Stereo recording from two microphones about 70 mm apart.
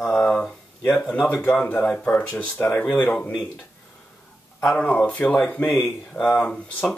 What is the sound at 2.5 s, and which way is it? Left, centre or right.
Speech, left.